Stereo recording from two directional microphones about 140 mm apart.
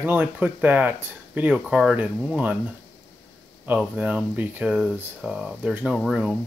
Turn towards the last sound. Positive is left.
turn(degrees=0)  # may be behind; listen again after turning